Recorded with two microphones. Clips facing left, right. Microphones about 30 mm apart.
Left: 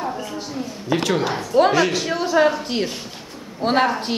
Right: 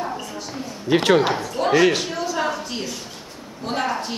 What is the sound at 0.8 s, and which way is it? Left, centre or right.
Speech, right.